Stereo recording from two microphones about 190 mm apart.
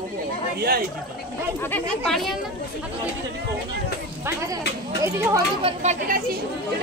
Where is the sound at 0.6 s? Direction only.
50° right (ahead or behind).